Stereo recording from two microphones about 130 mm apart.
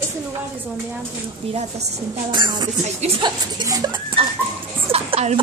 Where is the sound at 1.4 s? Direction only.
50° right (ahead or behind).